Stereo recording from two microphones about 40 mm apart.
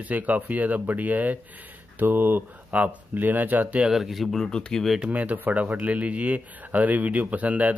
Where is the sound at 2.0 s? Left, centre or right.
Right.